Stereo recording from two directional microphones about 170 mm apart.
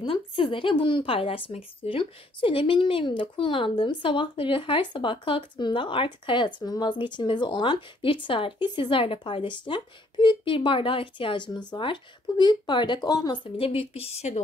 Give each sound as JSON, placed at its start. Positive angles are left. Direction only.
{"t": 0.0, "sound": "speech", "side_deg": 30}